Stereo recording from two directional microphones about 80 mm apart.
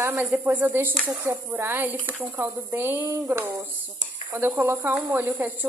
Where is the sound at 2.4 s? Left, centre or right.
Right.